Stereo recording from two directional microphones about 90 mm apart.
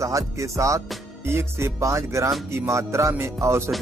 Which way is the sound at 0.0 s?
35° right (ahead or behind).